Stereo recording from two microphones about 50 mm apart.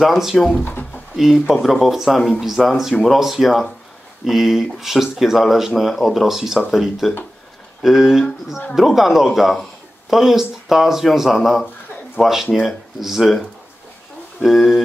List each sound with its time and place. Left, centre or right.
0.0 s speech: centre
0.7 s drawer open or close: left
1.1 s speech: centre
14.4 s speech: centre